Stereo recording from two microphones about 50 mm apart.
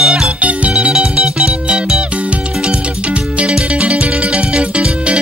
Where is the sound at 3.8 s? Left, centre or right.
Right.